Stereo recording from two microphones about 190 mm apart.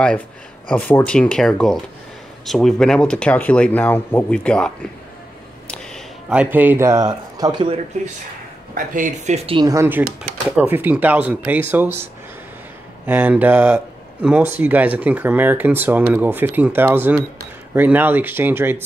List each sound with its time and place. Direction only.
0.7 s speech: 10° left (ahead or behind)
6.2 s speech: 5° right (ahead or behind)
8.7 s speech: 45° right (ahead or behind)
9.6 s speech: 15° right (ahead or behind)